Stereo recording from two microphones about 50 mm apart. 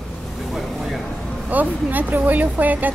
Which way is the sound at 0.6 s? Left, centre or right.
Centre.